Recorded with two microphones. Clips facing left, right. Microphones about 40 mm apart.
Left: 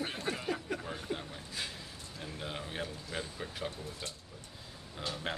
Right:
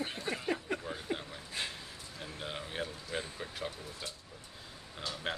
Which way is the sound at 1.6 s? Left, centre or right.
Right.